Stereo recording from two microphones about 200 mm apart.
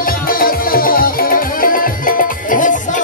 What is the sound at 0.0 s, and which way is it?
Music, 45° left (ahead or behind).